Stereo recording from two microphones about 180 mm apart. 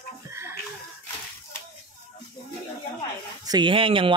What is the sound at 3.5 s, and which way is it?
Speech, 25° right (ahead or behind).